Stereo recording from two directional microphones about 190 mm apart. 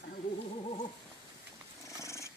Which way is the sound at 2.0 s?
15° left (ahead or behind).